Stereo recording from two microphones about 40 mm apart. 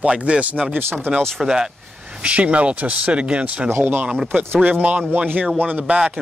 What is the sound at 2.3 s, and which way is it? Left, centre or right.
Speech, right.